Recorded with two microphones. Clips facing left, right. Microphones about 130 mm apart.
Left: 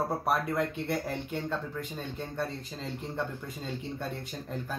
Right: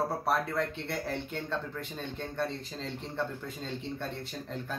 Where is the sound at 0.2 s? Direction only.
15° left (ahead or behind).